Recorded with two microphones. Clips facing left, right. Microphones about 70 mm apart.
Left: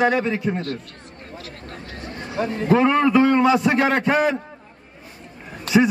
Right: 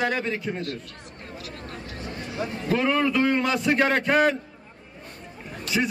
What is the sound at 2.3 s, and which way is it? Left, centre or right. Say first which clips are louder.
Speech: left 8 dB; left.